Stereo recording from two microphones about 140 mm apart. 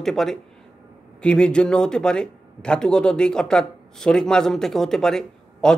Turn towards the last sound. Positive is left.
turn(degrees=5)  # may be behind; listen again after turning